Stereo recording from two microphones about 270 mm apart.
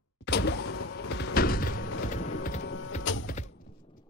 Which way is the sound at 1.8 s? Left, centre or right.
Left.